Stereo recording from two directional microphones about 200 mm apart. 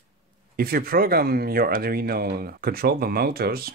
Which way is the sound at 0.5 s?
50° right (ahead or behind).